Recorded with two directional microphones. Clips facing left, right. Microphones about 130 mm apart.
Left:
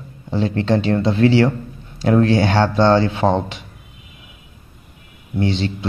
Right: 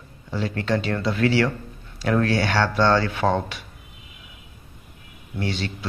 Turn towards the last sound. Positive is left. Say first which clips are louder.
# left 7 dB
turn(degrees=25)  # may be behind; listen again after turning